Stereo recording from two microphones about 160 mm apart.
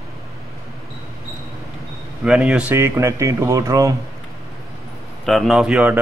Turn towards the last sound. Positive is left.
turn(degrees=-5)  # may be behind; listen again after turning